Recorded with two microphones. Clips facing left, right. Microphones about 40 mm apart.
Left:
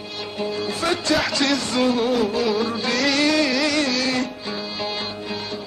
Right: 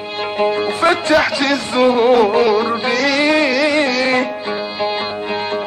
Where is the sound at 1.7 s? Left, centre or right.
Right.